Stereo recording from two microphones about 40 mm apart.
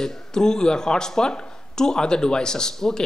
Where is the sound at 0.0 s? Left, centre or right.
Centre.